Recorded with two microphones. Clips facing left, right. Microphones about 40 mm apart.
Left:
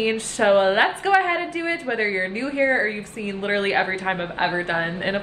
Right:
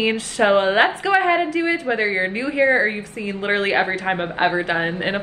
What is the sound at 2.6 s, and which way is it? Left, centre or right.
Speech, right.